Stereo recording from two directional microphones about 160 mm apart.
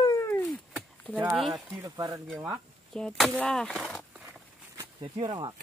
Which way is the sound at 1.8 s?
20° right (ahead or behind).